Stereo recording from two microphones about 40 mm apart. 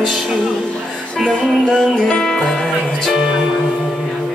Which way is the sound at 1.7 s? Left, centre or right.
Left.